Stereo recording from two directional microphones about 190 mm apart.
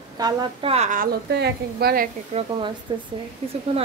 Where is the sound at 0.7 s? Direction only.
40° right (ahead or behind).